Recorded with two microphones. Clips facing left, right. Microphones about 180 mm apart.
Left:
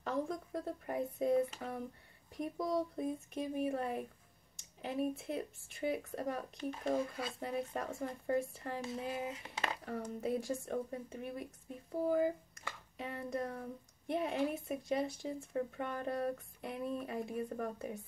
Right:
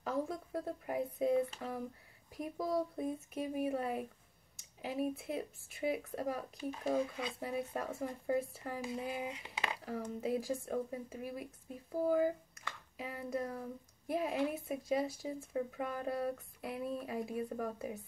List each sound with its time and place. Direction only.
0.0 s speech: 5° right (ahead or behind)
12.9 s speech: 5° right (ahead or behind)